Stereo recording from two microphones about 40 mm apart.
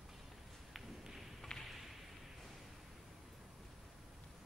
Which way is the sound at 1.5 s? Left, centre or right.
Centre.